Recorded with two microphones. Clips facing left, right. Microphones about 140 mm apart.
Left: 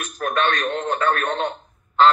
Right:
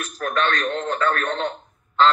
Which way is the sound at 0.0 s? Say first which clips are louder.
Left 1 dB; 20° left (ahead or behind).